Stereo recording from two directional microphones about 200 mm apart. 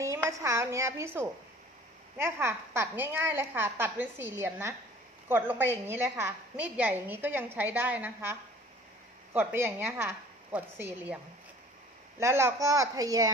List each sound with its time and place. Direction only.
0.0 s a woman's voice: 15° right (ahead or behind)
12.2 s a woman's voice: 15° right (ahead or behind)